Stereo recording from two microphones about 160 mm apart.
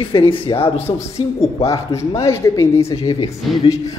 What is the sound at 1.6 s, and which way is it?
A man's voice, 20° left (ahead or behind).